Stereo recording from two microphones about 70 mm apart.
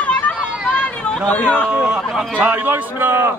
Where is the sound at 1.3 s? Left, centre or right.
Centre.